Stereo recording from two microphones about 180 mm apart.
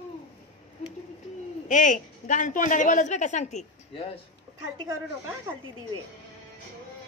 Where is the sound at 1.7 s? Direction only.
45° left (ahead or behind).